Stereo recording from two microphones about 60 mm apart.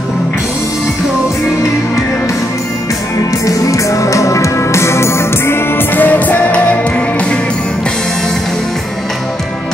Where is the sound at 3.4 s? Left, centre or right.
Left.